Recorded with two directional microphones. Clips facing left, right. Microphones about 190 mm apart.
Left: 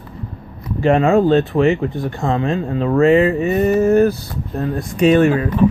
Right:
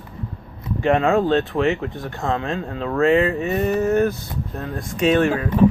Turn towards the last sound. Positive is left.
turn(degrees=0)  # may be behind; listen again after turning